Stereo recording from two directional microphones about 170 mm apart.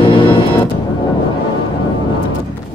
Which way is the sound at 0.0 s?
30° left (ahead or behind).